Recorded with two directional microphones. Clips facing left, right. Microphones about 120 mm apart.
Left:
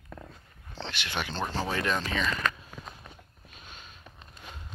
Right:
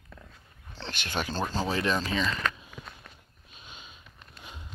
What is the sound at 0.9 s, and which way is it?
Speech, 40° right (ahead or behind).